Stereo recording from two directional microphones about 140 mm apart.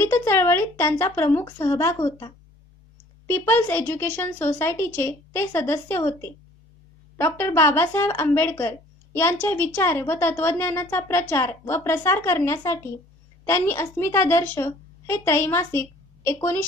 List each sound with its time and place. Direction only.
0.0 s a woman's voice: 15° left (ahead or behind)
7.2 s a woman's voice: 15° left (ahead or behind)